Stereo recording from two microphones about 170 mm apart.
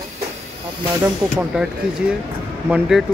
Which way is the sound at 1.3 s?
5° right (ahead or behind).